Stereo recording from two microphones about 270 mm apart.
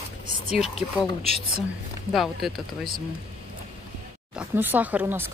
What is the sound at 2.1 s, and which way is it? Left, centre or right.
Speech, centre.